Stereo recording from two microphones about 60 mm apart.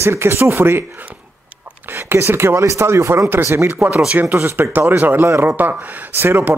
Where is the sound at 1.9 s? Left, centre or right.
Right.